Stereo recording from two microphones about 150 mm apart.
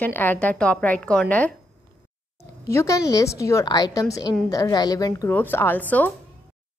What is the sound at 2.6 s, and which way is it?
A woman's voice, 20° left (ahead or behind).